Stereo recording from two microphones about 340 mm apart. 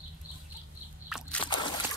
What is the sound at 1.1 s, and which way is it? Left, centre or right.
Slosh, centre.